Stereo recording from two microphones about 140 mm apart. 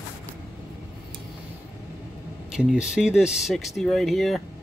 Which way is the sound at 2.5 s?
5° right (ahead or behind).